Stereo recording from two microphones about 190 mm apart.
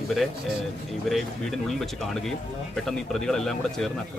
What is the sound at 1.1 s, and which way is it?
Speech, centre (ahead or behind).